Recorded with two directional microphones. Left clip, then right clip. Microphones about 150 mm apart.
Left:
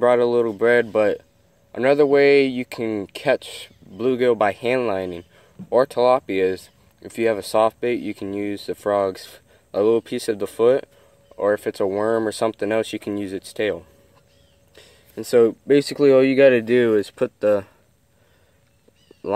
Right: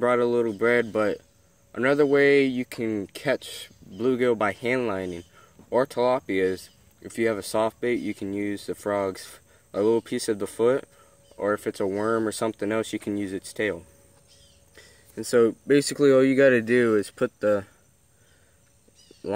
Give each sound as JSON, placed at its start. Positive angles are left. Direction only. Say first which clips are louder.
{"t": 0.0, "sound": "speech", "louder": "left 5 dB", "side_deg": -25}
{"t": 14.8, "sound": "speech", "louder": "left 3 dB", "side_deg": -20}